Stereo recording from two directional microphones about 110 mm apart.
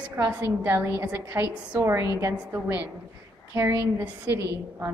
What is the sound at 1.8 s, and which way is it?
Speech, 25° right (ahead or behind).